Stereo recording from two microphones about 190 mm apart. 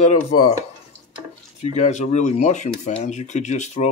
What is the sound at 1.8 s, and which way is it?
Speech, 40° left (ahead or behind).